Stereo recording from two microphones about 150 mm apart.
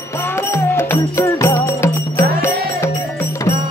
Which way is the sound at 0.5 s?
15° left (ahead or behind).